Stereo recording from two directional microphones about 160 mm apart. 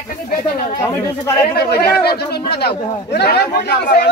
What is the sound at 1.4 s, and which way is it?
Speech, 80° left.